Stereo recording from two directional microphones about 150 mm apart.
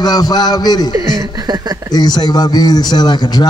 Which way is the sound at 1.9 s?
30° left (ahead or behind).